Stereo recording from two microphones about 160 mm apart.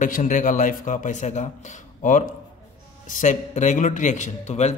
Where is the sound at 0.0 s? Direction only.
55° left (ahead or behind).